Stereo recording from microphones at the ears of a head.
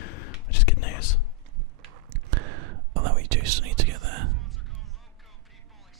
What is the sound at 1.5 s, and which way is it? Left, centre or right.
Whispering, right.